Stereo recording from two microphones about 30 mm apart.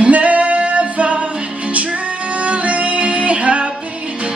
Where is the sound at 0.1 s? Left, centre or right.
Right.